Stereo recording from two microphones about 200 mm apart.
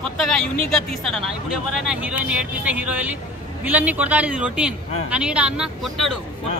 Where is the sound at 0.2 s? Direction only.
Centre (ahead or behind).